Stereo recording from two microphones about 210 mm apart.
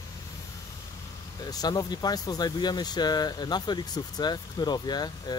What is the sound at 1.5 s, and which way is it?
Speech, 20° left (ahead or behind).